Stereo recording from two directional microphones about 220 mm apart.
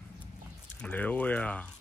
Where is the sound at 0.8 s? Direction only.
5° left (ahead or behind).